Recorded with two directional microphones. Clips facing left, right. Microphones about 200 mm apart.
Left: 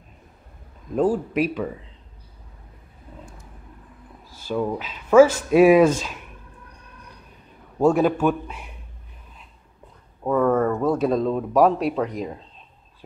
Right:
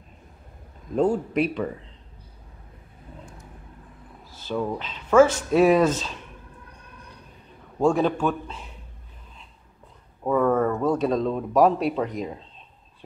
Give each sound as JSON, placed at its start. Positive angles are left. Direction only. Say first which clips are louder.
{"t": 0.9, "sound": "a man's voice", "louder": "left 1 dB", "side_deg": 5}
{"t": 4.3, "sound": "speech", "louder": "left 2 dB", "side_deg": 10}
{"t": 7.8, "sound": "speech", "louder": "left 3 dB", "side_deg": 10}
{"t": 10.2, "sound": "a man's voice", "louder": "left 1 dB", "side_deg": 0}